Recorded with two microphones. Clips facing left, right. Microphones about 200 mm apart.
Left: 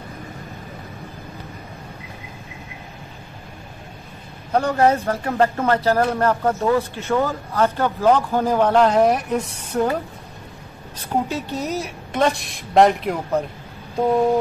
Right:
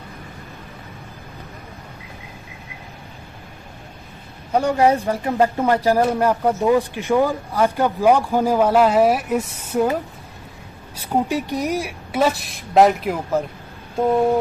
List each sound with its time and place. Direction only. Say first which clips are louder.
4.5 s a man's voice: right 1 dB; 10° right (ahead or behind)
11.0 s a woman's voice: right 3 dB; 15° right (ahead or behind)